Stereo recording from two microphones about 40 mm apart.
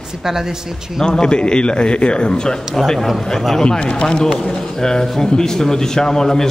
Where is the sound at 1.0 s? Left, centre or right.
Centre.